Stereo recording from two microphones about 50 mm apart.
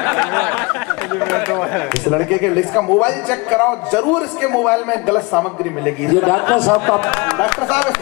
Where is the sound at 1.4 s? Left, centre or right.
Centre.